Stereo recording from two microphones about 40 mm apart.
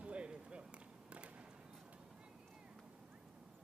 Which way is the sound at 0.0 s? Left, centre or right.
Right.